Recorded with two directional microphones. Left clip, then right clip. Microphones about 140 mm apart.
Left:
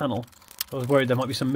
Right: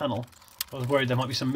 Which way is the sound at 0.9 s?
45° left (ahead or behind).